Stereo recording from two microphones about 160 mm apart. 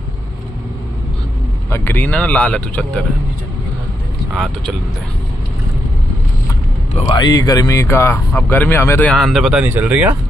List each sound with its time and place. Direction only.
1.7 s speech: 15° left (ahead or behind)
7.1 s speech: 25° left (ahead or behind); by 10.0 s 10° right (ahead or behind)